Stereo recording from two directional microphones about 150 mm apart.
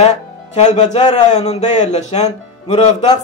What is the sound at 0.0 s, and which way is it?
Speech, 50° left (ahead or behind).